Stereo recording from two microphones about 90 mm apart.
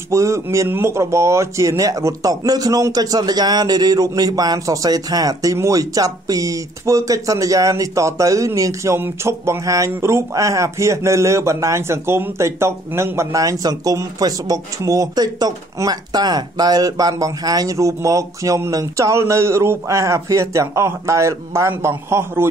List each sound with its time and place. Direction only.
0.1 s a man's voice: 35° right (ahead or behind)